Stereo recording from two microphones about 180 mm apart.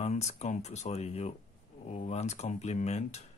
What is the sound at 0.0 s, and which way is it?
Speech, 35° left (ahead or behind).